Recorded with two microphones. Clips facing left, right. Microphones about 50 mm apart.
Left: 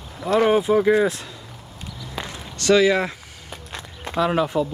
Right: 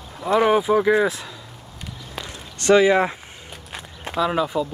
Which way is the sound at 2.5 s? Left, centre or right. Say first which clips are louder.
Right 2 dB; right.